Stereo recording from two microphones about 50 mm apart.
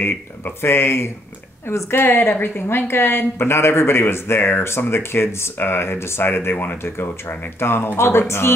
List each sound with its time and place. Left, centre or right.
0.6 s speech: left
6.5 s speech: left
6.8 s speech: left